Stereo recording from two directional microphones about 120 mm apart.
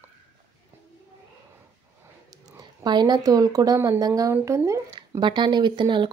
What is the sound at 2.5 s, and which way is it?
Speech, 35° right (ahead or behind).